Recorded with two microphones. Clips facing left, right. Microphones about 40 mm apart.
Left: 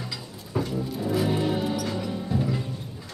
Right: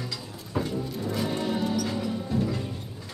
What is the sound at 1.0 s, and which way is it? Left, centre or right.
Music, centre.